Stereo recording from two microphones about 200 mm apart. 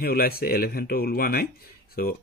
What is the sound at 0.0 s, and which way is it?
Speech, 50° left (ahead or behind).